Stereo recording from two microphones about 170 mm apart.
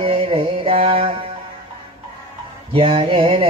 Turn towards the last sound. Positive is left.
turn(degrees=-30)  # may be behind; listen again after turning